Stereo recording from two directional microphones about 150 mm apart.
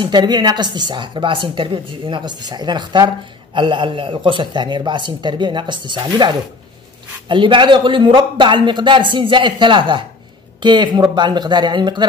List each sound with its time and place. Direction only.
0.0 s a woman's voice: 30° right (ahead or behind)